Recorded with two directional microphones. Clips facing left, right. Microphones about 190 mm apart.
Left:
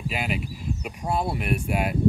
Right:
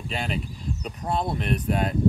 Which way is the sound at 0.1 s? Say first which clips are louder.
Right 3 dB; 5° left (ahead or behind).